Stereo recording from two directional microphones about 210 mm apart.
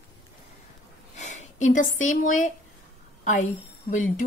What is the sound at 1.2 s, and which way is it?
Speech, 35° left (ahead or behind).